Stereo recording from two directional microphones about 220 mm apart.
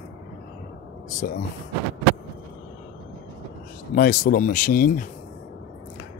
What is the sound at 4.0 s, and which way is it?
Speech, 40° left (ahead or behind).